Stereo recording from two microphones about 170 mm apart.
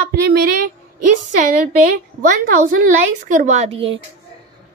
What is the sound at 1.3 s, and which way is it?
A woman's voice, 45° right (ahead or behind).